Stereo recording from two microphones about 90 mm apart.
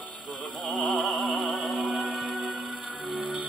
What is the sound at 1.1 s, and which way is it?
Music, centre (ahead or behind).